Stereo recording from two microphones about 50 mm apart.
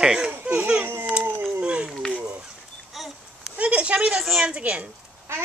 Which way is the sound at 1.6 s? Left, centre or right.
Right.